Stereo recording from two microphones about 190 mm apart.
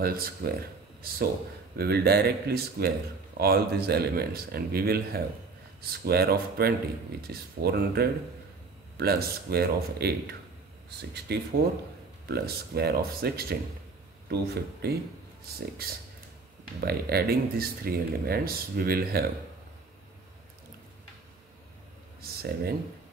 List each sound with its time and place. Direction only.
0.0 s speech: 50° right (ahead or behind)
16.8 s speech: 55° right (ahead or behind)
22.2 s speech: 55° right (ahead or behind)